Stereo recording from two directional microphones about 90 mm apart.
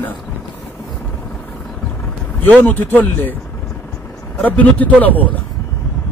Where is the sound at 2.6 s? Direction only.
15° left (ahead or behind).